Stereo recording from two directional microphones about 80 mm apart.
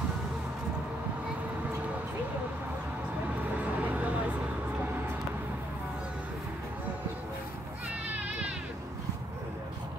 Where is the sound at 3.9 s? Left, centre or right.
Centre.